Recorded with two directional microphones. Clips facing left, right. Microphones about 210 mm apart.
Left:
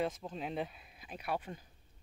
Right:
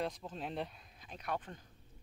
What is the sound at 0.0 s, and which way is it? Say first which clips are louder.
Speech: left 3 dB; 5° left (ahead or behind).